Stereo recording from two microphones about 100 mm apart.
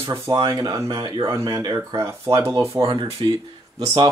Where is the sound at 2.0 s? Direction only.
30° right (ahead or behind).